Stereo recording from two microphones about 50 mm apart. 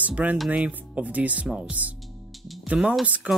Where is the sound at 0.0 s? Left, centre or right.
Right.